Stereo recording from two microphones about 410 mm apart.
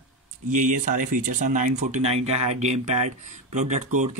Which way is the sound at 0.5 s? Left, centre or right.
Centre.